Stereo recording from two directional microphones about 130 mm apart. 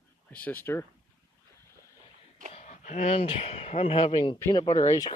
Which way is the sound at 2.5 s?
65° left (ahead or behind).